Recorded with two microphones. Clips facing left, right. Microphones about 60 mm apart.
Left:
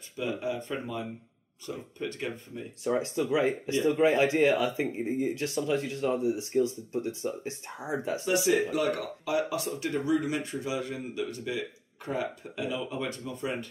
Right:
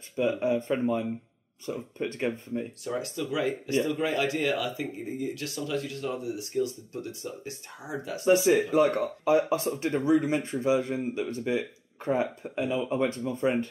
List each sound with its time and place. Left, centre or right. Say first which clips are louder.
0.4 s speech: right 7 dB; right
2.8 s speech: left 4 dB; left
8.3 s speech: right 5 dB; right